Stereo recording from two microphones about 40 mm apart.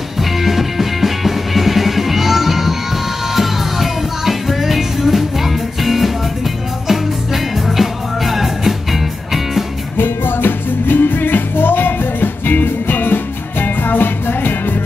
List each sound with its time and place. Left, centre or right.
0.2 s music: centre
9.9 s music: left